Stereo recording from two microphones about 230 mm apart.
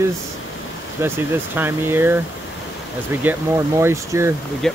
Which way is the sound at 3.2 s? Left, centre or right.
Centre.